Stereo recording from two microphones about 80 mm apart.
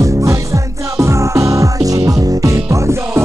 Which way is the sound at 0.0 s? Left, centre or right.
Right.